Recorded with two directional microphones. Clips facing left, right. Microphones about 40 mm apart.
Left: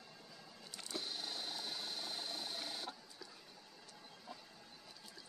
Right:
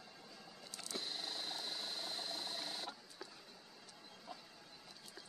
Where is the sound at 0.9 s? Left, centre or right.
Right.